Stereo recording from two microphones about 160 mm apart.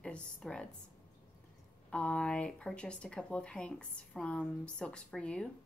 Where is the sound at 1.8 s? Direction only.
5° left (ahead or behind).